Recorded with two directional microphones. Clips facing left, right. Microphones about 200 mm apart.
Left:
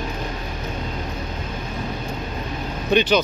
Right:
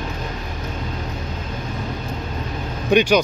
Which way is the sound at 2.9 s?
10° right (ahead or behind).